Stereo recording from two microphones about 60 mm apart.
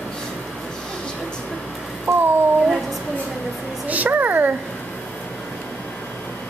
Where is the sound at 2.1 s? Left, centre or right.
Right.